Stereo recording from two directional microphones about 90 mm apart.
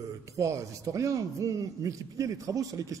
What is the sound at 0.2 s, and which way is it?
Speech, 35° right (ahead or behind).